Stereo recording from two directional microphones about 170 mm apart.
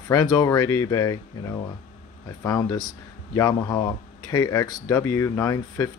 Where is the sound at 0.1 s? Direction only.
20° left (ahead or behind).